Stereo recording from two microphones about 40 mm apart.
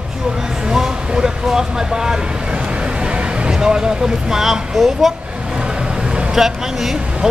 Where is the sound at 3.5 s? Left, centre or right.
Centre.